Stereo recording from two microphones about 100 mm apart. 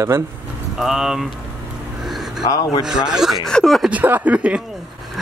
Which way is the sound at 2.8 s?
5° right (ahead or behind).